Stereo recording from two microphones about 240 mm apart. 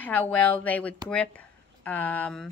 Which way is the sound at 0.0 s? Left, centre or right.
Centre.